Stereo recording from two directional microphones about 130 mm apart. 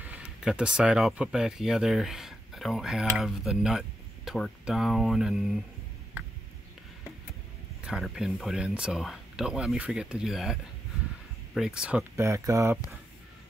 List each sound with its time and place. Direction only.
0.0 s speech: 10° right (ahead or behind)
7.8 s speech: 5° right (ahead or behind)
12.0 s speech: 20° right (ahead or behind)